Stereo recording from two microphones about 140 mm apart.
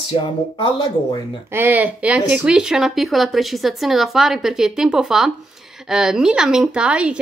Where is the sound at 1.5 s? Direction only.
15° right (ahead or behind).